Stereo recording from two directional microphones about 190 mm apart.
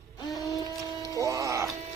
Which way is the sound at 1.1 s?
15° right (ahead or behind).